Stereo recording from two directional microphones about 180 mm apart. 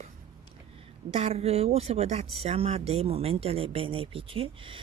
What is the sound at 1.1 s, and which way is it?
Speech, 35° right (ahead or behind).